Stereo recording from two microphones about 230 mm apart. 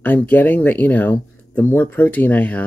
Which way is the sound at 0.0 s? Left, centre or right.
Centre.